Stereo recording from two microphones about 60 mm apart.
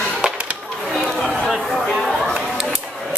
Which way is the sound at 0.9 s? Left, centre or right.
Centre.